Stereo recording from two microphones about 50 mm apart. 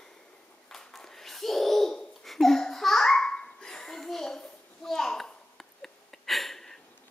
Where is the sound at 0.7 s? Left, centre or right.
Centre.